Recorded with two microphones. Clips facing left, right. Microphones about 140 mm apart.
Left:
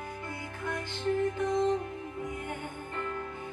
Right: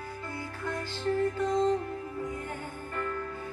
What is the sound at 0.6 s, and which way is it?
Music, 20° left (ahead or behind).